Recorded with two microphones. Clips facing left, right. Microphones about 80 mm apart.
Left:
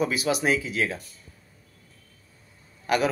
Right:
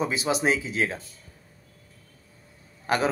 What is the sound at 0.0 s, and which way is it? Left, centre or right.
Speech, right.